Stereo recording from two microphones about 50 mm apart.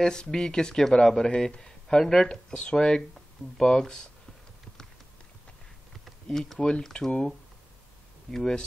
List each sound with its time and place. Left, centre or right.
0.0 s speech: centre
0.8 s speech: centre
6.3 s speech: centre
8.3 s speech: centre